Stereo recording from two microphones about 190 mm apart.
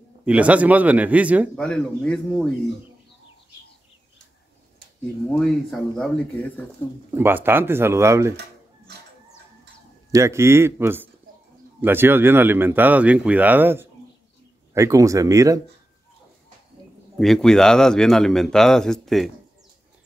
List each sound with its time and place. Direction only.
0.2 s speech: 5° right (ahead or behind)
1.6 s speech: 5° left (ahead or behind)
5.3 s speech: centre (ahead or behind)
7.1 s speech: 10° right (ahead or behind)
10.1 s speech: 15° right (ahead or behind)
17.2 s speech: centre (ahead or behind)